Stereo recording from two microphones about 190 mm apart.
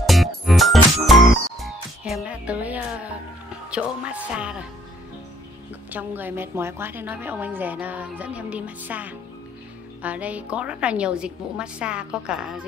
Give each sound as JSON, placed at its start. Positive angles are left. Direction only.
{"t": 0.0, "sound": "music", "side_deg": 0}
{"t": 3.7, "sound": "a woman's voice", "side_deg": -5}
{"t": 5.9, "sound": "a woman's voice", "side_deg": -10}